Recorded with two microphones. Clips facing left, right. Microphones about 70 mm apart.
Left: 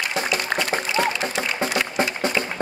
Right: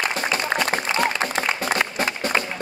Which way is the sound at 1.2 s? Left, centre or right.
Right.